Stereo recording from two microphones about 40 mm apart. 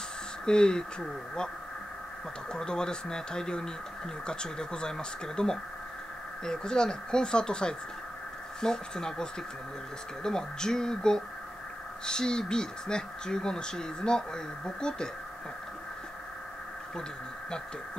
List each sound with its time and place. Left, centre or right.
0.5 s speech: centre
2.5 s speech: centre